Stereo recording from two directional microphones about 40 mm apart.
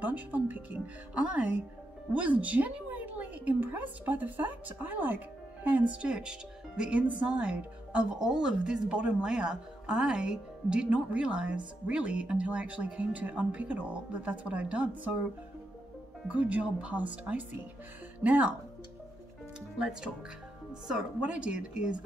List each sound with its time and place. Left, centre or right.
0.0 s a woman's voice: right
5.9 s speech: right
6.8 s speech: right
8.1 s speech: centre; by 14.9 s right
16.3 s speech: right
21.2 s speech: right